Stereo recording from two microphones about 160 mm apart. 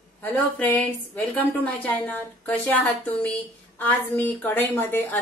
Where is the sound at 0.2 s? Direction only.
10° left (ahead or behind).